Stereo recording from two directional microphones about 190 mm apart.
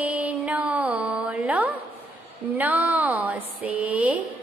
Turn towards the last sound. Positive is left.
turn(degrees=-10)  # may be behind; listen again after turning